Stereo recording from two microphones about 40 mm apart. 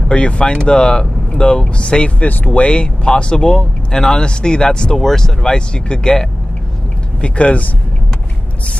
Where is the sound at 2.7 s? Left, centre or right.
Left.